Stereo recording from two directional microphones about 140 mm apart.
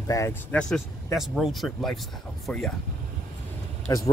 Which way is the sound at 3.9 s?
25° left (ahead or behind).